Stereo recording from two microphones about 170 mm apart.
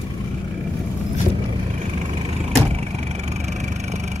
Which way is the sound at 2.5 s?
40° right (ahead or behind).